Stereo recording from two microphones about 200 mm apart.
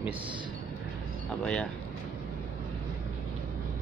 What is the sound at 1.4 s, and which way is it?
Speech, 5° left (ahead or behind).